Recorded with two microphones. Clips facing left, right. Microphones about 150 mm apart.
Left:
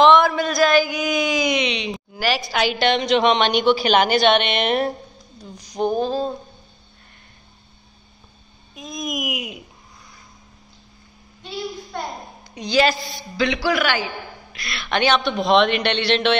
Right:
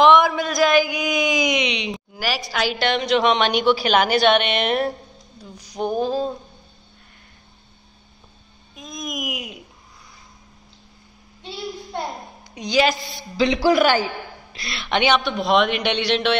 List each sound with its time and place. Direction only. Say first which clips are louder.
0.0 s a sound: left 1 dB; 10° right (ahead or behind)
2.5 s a woman's voice: left 2 dB; centre (ahead or behind)
8.7 s a child's voice: left 3 dB; 5° left (ahead or behind)
12.5 s a man's voice: left 1 dB; 10° right (ahead or behind)
13.6 s a man's voice: right 5 dB; 40° right (ahead or behind)
14.5 s a man's voice: right 1 dB; 25° right (ahead or behind); by 16.3 s 10° right (ahead or behind)